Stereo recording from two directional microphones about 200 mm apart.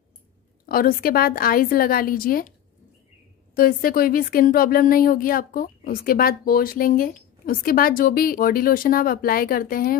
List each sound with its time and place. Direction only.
0.7 s speech: 45° left (ahead or behind)
3.5 s speech: 45° left (ahead or behind)